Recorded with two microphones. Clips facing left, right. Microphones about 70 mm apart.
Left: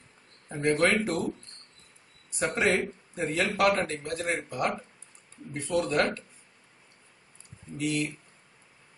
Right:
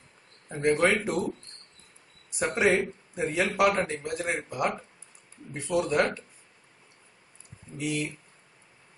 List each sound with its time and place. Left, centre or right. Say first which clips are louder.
0.6 s speech: right 1 dB; centre
2.3 s speech: right 2 dB; centre
7.7 s speech: left 1 dB; centre